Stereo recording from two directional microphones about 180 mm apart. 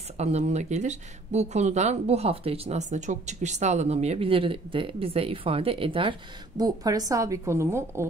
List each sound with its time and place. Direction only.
0.2 s a woman's voice: 40° right (ahead or behind); by 8.1 s 15° right (ahead or behind)